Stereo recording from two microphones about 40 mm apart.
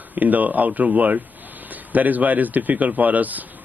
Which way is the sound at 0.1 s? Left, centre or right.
Right.